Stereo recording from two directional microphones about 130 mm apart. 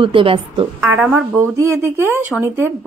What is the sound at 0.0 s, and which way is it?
Speech, 40° right (ahead or behind).